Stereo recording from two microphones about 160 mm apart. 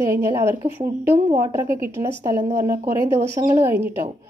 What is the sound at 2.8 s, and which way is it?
Speech, 20° right (ahead or behind).